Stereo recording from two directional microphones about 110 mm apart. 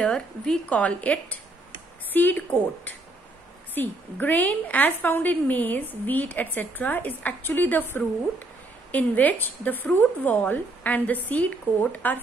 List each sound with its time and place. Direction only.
0.0 s a woman's voice: 5° left (ahead or behind)